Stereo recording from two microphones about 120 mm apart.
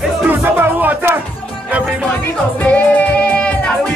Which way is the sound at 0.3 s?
15° right (ahead or behind).